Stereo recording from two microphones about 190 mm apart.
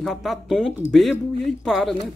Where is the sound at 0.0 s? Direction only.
Centre (ahead or behind).